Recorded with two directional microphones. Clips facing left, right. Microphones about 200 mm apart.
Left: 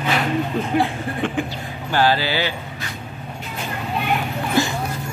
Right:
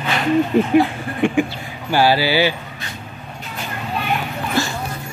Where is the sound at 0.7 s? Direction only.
15° right (ahead or behind).